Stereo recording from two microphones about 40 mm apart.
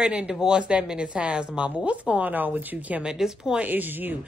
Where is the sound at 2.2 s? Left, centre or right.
Right.